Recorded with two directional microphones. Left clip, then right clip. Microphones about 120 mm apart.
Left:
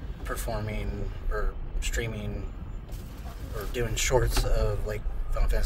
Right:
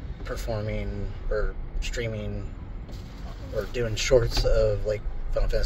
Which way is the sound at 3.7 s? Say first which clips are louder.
Right 4 dB; 30° left (ahead or behind).